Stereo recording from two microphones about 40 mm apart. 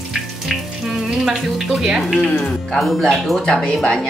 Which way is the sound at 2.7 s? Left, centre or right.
Centre.